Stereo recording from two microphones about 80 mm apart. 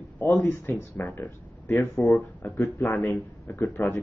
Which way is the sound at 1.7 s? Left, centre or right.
Left.